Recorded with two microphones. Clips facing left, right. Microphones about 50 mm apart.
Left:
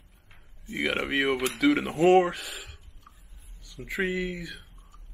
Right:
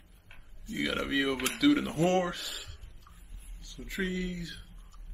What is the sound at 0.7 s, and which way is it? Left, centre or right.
Speech, left.